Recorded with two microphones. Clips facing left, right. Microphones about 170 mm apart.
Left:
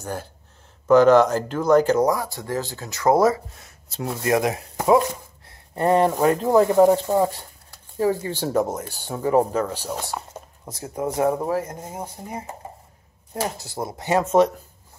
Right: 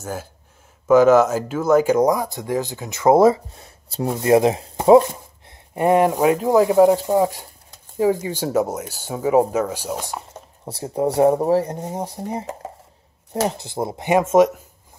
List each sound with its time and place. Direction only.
0.0 s speech: 5° right (ahead or behind); by 5.0 s 30° right (ahead or behind)
5.5 s speech: 15° right (ahead or behind)
10.6 s speech: 30° right (ahead or behind)
13.6 s speech: 25° right (ahead or behind)